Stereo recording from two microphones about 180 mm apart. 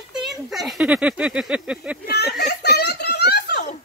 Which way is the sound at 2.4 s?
65° left (ahead or behind).